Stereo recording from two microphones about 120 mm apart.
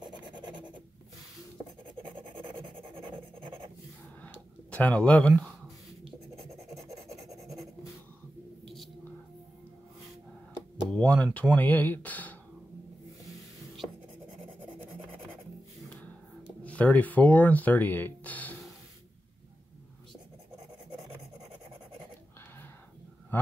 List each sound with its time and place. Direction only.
0.0 s a sound: 40° right (ahead or behind)
2.0 s rub: 45° right (ahead or behind)
4.6 s speech: 10° left (ahead or behind)
6.7 s filing: centre (ahead or behind)
10.9 s speech: 10° left (ahead or behind)
16.6 s speech: 15° left (ahead or behind)